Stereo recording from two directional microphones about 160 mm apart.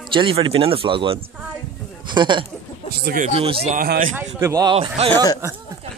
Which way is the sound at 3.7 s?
65° right (ahead or behind).